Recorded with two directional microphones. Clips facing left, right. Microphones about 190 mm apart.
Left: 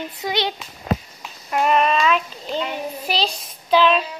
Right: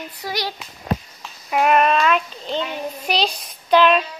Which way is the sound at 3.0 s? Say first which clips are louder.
Right 3 dB; centre (ahead or behind).